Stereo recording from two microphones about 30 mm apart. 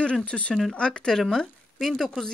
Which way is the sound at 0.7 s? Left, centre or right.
Left.